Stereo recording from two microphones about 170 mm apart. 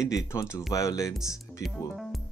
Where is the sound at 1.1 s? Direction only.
Centre (ahead or behind).